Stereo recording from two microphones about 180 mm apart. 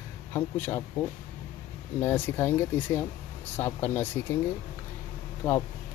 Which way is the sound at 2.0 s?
10° left (ahead or behind).